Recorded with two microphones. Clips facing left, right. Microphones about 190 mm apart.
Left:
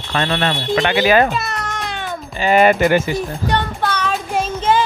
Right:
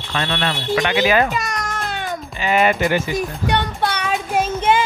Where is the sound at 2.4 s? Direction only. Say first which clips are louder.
Left 5 dB; 45° left (ahead or behind).